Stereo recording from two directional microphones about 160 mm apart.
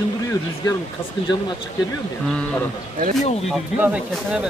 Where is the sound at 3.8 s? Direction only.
10° right (ahead or behind).